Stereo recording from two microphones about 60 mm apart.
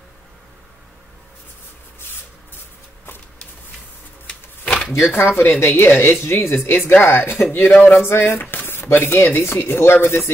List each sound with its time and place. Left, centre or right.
5.0 s speech: left
6.6 s speech: left